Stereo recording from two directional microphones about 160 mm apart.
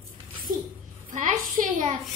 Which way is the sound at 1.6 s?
55° right (ahead or behind).